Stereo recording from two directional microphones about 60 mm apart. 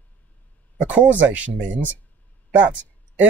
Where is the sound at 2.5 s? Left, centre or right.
Right.